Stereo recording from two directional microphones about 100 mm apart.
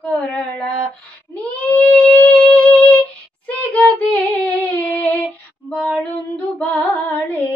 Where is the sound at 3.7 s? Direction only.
10° left (ahead or behind).